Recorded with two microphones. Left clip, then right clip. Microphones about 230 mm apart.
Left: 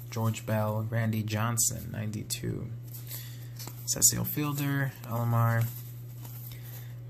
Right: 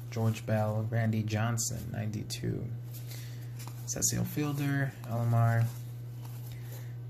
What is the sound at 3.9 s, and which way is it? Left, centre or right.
Speech, centre.